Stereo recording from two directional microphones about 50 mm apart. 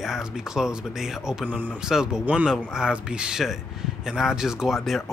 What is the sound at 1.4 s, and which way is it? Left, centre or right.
Speech, right.